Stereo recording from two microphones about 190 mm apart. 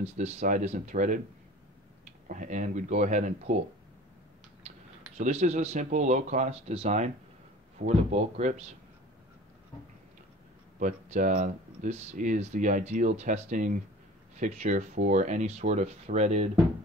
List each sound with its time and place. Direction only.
0.0 s speech: 35° right (ahead or behind)
2.2 s speech: 40° right (ahead or behind)
5.1 s speech: 35° right (ahead or behind)
10.8 s speech: 45° right (ahead or behind)